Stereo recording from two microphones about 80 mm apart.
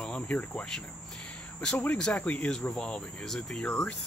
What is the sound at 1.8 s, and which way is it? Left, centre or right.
Speech, centre.